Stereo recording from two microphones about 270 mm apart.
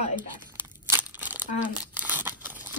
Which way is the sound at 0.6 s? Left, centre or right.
Centre.